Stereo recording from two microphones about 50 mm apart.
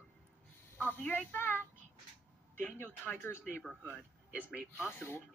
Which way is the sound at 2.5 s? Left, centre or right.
Left.